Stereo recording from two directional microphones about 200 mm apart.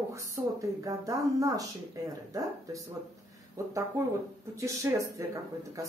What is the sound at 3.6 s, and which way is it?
A woman's voice, 15° right (ahead or behind).